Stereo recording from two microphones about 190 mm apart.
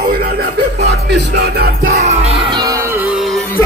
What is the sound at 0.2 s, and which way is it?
Music, 55° right (ahead or behind).